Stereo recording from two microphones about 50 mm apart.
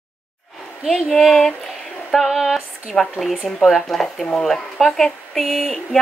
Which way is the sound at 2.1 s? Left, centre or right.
Centre.